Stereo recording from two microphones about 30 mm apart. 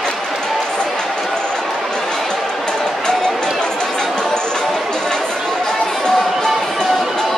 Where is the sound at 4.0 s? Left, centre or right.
Centre.